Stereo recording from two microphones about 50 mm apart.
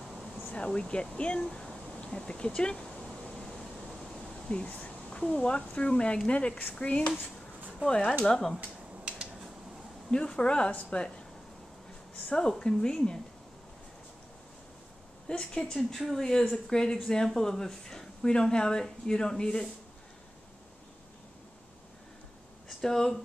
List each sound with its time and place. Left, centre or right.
0.1 s air conditioning: centre
0.7 s speech: centre
3.3 s a sound: centre
4.5 s a sound: left
5.2 s speech: centre
8.3 s speech: centre
8.5 s a sound: right
10.1 s speech: centre
12.3 s speech: centre
15.2 s speech: centre
15.6 s speech: centre
22.8 s speech: centre